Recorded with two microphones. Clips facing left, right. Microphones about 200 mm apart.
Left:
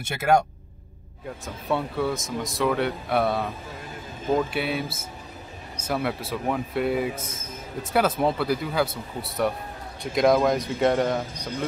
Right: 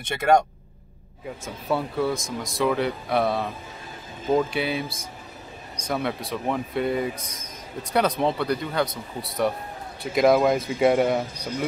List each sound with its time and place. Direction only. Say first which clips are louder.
0.1 s speech: right 2 dB; 5° left (ahead or behind); by 11.6 s 10° right (ahead or behind)